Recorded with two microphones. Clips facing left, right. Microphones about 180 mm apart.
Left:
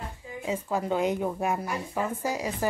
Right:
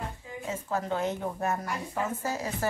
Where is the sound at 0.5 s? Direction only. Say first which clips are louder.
Left 3 dB; 15° left (ahead or behind).